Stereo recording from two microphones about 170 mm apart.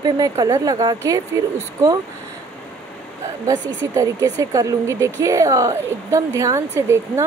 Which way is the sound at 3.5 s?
20° right (ahead or behind).